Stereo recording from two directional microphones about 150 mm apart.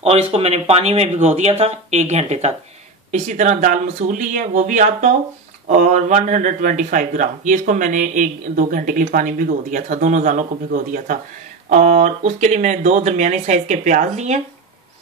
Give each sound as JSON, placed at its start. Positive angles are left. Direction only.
{"t": 0.0, "sound": "speech", "side_deg": -45}
{"t": 11.7, "sound": "speech", "side_deg": -50}